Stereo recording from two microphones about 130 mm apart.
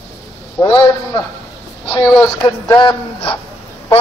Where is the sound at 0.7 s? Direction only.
40° left (ahead or behind).